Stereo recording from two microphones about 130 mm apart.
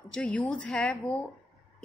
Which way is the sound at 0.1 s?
10° left (ahead or behind).